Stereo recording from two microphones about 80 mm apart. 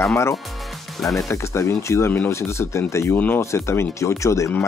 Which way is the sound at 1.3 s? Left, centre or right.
Left.